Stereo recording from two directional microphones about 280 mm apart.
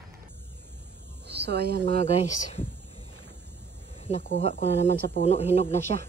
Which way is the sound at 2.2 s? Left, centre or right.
Left.